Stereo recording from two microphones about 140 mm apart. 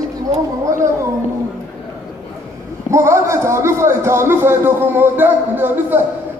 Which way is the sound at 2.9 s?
20° right (ahead or behind).